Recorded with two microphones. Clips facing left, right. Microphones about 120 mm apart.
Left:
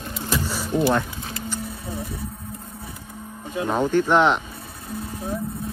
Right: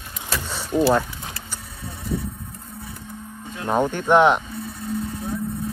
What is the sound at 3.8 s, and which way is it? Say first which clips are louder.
Speech: right 1 dB; 15° right (ahead or behind).